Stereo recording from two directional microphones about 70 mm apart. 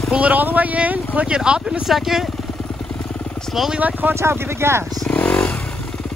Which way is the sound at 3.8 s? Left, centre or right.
Right.